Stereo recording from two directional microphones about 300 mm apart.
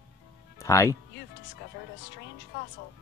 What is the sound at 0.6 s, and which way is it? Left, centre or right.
Speech, centre.